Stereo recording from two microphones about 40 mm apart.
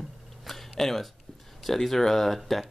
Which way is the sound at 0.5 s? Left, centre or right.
Centre.